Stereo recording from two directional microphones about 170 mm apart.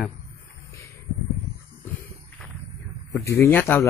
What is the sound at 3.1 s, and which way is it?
Speech, 15° left (ahead or behind).